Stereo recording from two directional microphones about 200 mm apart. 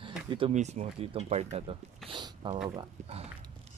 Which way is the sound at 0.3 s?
30° right (ahead or behind).